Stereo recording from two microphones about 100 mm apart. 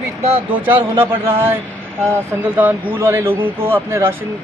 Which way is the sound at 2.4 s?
20° right (ahead or behind).